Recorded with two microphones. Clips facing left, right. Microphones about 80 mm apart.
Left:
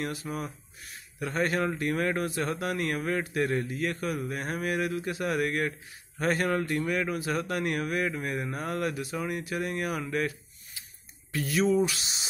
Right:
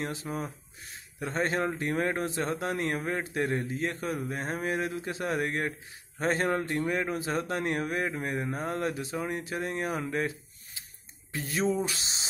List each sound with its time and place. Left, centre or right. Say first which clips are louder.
0.0 s a man's voice: even; right